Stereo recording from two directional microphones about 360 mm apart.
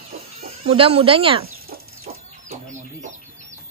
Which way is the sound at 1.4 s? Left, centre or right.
Right.